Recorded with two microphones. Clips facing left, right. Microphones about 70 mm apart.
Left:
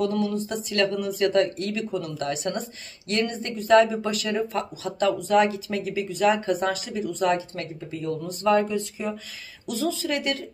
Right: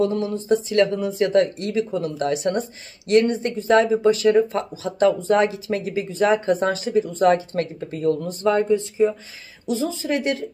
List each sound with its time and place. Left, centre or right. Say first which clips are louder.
0.0 s speech: right 3 dB; right
7.9 s speech: right 7 dB; right
8.4 s speech: even; right